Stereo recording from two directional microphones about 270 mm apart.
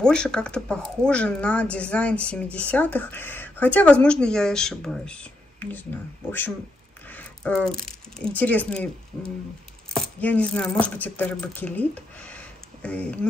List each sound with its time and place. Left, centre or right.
0.0 s speech: centre
7.1 s speech: centre
9.9 s speech: centre